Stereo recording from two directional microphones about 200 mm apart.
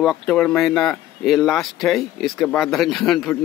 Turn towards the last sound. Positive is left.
turn(degrees=0)  # may be behind; listen again after turning